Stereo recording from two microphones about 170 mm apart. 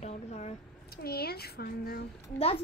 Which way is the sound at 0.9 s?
65° left (ahead or behind).